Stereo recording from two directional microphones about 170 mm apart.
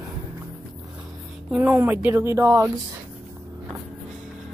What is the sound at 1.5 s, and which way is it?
Speech, 10° right (ahead or behind).